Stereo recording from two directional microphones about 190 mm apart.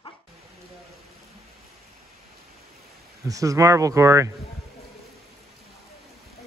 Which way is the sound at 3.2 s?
15° right (ahead or behind).